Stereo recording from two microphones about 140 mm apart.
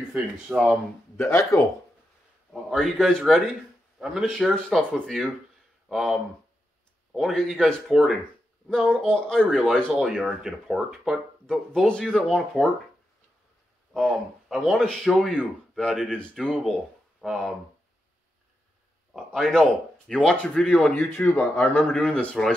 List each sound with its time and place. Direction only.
0.1 s speech: 5° right (ahead or behind)
1.1 s speech: 20° left (ahead or behind)
2.5 s speech: 5° left (ahead or behind)
14.5 s speech: centre (ahead or behind)
19.1 s speech: centre (ahead or behind)